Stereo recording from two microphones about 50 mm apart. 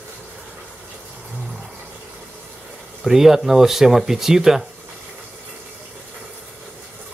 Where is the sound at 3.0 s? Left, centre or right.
Centre.